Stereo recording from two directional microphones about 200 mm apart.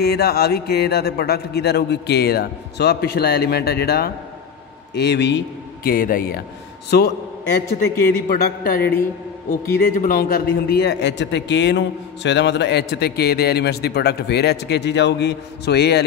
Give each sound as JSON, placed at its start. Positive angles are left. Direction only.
{"t": 0.0, "sound": "a man's voice", "side_deg": 50}
{"t": 5.9, "sound": "speech", "side_deg": 45}
{"t": 8.1, "sound": "speech", "side_deg": 50}
{"t": 9.9, "sound": "a man's voice", "side_deg": 45}